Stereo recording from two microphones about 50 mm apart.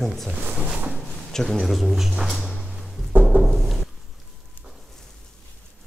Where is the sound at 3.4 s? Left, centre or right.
Centre.